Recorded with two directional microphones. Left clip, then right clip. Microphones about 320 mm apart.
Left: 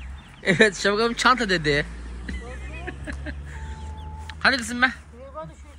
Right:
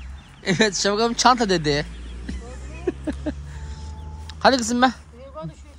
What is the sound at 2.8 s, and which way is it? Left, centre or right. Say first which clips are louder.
Speech: right 10 dB; left.